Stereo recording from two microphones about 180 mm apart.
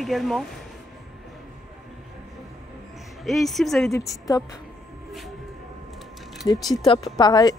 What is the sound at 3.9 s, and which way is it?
Speech, 20° left (ahead or behind).